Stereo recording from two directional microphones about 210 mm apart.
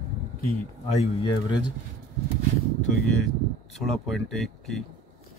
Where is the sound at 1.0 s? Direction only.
20° left (ahead or behind).